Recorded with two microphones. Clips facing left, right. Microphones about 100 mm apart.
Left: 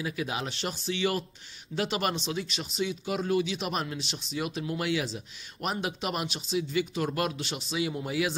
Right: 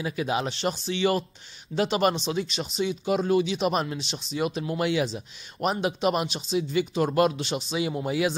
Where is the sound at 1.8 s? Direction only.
30° right (ahead or behind).